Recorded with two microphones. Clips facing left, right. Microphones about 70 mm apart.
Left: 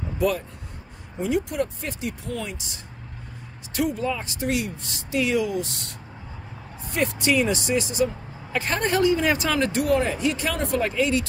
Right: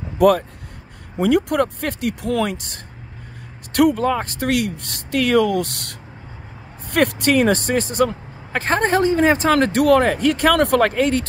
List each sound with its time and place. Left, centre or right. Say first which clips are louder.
0.2 s speech: right 10 dB; right
2.5 s speech: right 6 dB; right
3.7 s speech: right 9 dB; right
9.5 s speech: right 7 dB; right
10.5 s speech: right 9 dB; right